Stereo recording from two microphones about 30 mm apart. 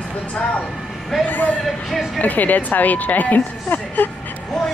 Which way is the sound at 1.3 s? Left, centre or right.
Left.